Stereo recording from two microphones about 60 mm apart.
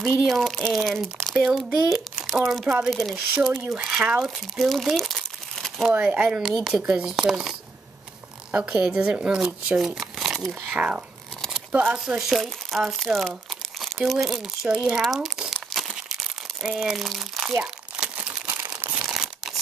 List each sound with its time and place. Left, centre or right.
0.3 s speech: centre
2.9 s speech: centre
3.7 s speech: centre
4.6 s crumpling: centre
5.9 s speech: right
6.2 s speech: centre
10.7 s speech: right
12.2 s speech: centre
13.7 s crumpling: centre
14.2 s speech: centre
15.5 s crumpling: centre
17.5 s crumpling: right
19.0 s crumpling: centre